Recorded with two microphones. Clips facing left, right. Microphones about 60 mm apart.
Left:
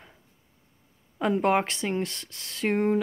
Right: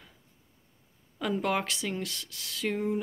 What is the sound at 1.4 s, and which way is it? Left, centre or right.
Speech, left.